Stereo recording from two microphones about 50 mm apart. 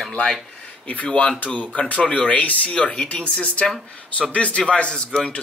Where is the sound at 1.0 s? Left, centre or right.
Left.